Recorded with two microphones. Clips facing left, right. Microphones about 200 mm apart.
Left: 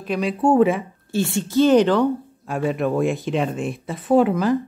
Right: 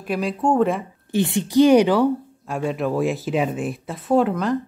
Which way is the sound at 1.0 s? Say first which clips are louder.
Right 2 dB; 20° right (ahead or behind).